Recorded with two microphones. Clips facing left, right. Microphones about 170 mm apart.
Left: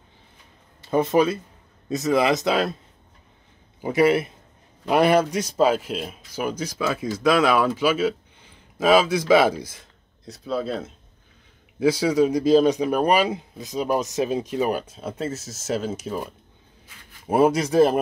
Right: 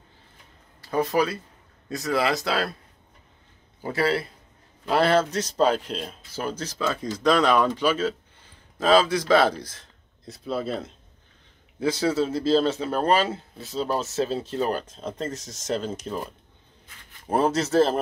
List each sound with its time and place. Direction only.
0.7 s speech: 20° left (ahead or behind)
3.8 s speech: 20° left (ahead or behind)
10.2 s speech: centre (ahead or behind)
11.8 s a man's voice: 10° left (ahead or behind)